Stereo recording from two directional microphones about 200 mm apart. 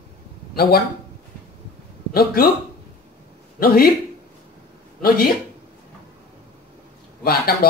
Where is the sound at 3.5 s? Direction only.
50° left (ahead or behind).